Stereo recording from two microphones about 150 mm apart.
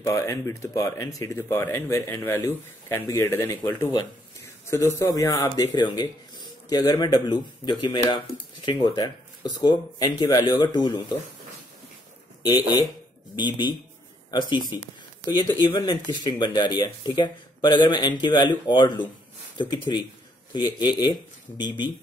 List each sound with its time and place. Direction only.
0.0 s speech: 20° left (ahead or behind)
12.4 s speech: 25° left (ahead or behind)
20.5 s speech: 30° left (ahead or behind)